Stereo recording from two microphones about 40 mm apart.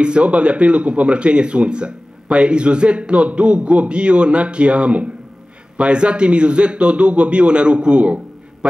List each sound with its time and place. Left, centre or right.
0.0 s a man's voice: right